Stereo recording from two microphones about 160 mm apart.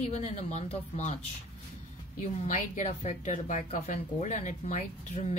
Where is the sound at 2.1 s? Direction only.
55° left (ahead or behind).